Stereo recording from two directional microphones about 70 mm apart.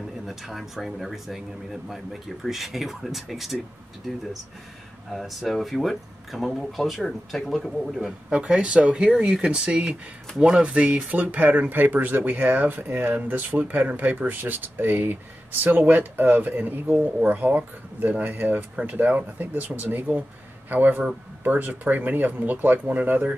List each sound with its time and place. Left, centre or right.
0.3 s speech: centre
5.1 s speech: centre
8.3 s speech: centre